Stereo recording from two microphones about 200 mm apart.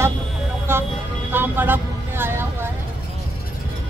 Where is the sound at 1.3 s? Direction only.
10° right (ahead or behind).